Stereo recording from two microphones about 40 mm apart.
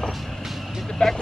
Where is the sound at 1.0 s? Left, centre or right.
Centre.